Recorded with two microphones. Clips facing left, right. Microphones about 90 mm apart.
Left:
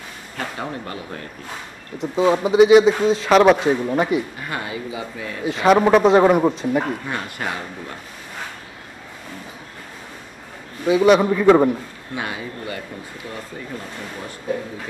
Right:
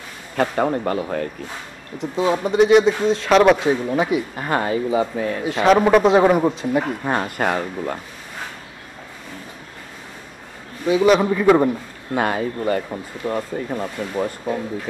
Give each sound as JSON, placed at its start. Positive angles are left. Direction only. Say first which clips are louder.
{"t": 0.4, "sound": "speech", "louder": "right 9 dB", "side_deg": -50}
{"t": 2.0, "sound": "a man's voice", "louder": "left 2 dB", "side_deg": 0}
{"t": 4.4, "sound": "speech", "louder": "right 7 dB", "side_deg": -40}
{"t": 5.4, "sound": "a man's voice", "louder": "even", "side_deg": 0}
{"t": 7.1, "sound": "speech", "louder": "right 6 dB", "side_deg": -50}
{"t": 10.9, "sound": "a man's voice", "louder": "left 1 dB", "side_deg": 0}
{"t": 12.2, "sound": "speech", "louder": "right 8 dB", "side_deg": -45}
{"t": 13.2, "sound": "speech", "louder": "right 12 dB", "side_deg": -65}